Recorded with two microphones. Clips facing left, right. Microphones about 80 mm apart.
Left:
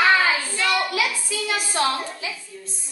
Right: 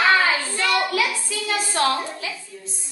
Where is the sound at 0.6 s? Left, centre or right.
Centre.